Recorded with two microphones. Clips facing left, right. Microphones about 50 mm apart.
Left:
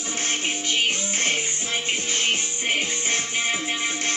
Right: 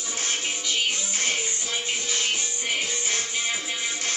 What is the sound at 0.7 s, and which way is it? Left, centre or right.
Music, left.